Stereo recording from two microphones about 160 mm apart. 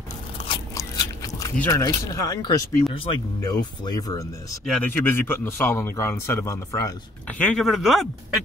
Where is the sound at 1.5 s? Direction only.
15° left (ahead or behind).